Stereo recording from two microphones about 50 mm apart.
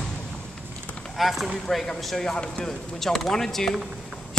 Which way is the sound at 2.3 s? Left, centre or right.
Centre.